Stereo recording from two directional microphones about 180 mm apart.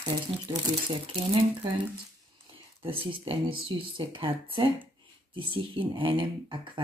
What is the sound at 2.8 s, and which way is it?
Speech, 30° right (ahead or behind).